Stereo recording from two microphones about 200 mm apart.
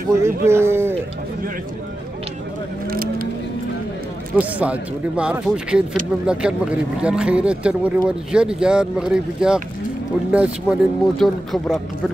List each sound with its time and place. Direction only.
0.2 s speech: 10° right (ahead or behind)
2.9 s vehicle: 45° right (ahead or behind)
4.4 s speech: 5° right (ahead or behind)